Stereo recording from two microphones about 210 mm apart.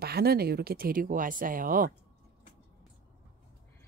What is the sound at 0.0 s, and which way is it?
Speech, 50° right (ahead or behind).